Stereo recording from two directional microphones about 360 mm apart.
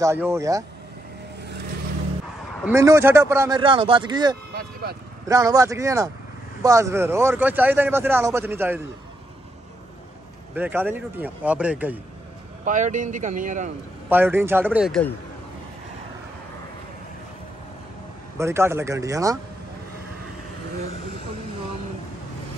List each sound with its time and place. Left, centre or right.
0.0 s speech: centre
2.6 s speech: centre
10.5 s speech: centre
12.6 s speech: right
14.0 s speech: centre
18.4 s speech: centre